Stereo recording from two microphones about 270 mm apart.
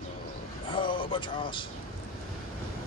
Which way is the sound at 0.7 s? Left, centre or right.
Centre.